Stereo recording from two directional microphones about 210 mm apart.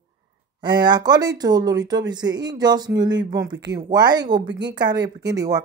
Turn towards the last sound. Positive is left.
turn(degrees=-15)  # may be behind; listen again after turning